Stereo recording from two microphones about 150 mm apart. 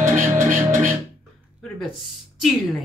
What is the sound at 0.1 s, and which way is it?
Music, 60° right (ahead or behind).